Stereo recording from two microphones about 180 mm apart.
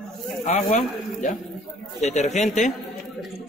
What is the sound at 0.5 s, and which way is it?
Speech, 40° left (ahead or behind).